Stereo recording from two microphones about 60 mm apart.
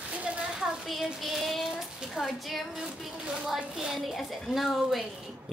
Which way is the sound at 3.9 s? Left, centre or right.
Centre.